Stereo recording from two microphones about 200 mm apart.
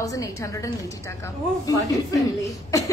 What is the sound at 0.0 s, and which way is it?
Speech, 15° left (ahead or behind).